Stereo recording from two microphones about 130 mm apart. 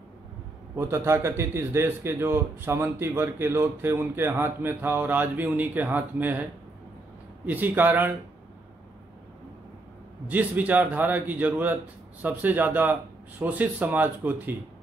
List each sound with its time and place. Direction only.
0.7 s a man's voice: 20° right (ahead or behind)
7.4 s a man's voice: 15° right (ahead or behind)
10.2 s a man's voice: 10° right (ahead or behind)